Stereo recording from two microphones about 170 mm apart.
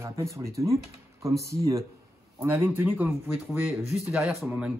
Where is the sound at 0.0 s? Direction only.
15° right (ahead or behind).